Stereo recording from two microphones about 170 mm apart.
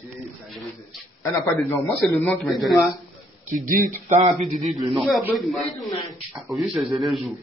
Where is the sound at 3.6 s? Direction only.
50° right (ahead or behind).